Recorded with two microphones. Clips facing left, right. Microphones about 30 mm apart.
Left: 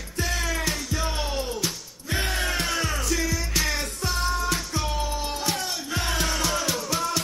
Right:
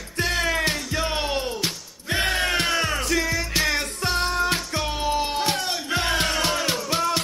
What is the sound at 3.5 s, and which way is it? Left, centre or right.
Music, right.